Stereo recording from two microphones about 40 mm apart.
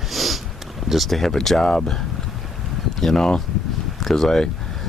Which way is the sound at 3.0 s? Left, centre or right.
Centre.